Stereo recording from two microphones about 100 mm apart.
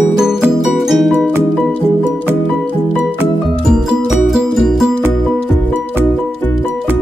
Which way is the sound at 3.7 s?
5° right (ahead or behind).